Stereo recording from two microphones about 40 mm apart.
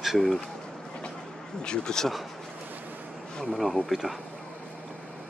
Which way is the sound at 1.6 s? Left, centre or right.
Centre.